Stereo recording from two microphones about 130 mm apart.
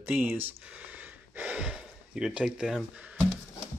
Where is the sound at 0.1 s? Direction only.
15° right (ahead or behind).